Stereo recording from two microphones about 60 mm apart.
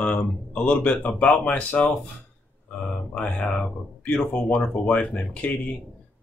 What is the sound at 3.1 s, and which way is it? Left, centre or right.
Speech, left.